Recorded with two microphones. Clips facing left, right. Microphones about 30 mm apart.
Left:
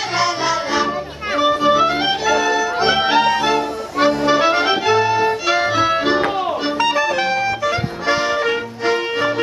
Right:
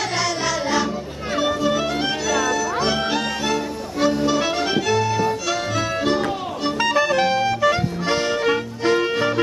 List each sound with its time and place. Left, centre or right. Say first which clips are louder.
0.1 s music: left 4 dB; left
6.8 s music: even; centre